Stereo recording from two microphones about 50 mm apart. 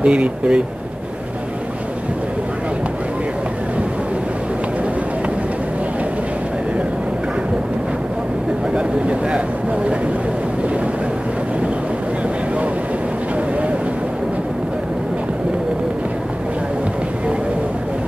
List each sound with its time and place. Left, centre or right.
0.0 s speech: right
8.7 s speech: right